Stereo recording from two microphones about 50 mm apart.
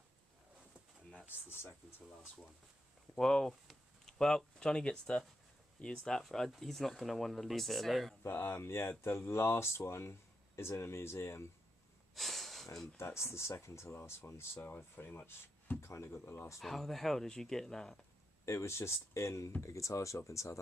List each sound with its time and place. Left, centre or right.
1.3 s speech: left
3.2 s speech: centre
8.3 s speech: left
12.2 s a sound: centre
12.9 s speech: left
14.6 s speech: left
15.8 s speech: left
16.5 s speech: centre
18.4 s speech: left
19.6 s speech: left